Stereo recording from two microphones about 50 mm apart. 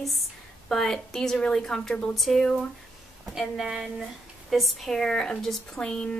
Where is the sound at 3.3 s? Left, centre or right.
Centre.